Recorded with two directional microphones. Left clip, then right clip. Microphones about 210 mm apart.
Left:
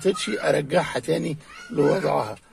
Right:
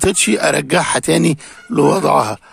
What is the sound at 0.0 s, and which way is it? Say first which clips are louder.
Speech: right 9 dB; 50° right (ahead or behind).